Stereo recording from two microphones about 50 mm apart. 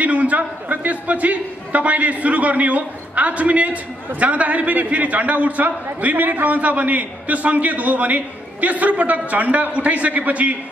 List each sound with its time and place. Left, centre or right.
0.0 s a man's voice: right